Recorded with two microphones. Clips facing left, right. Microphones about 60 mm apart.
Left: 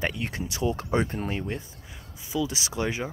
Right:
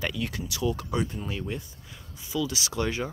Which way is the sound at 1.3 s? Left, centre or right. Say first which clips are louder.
Left 2 dB; left.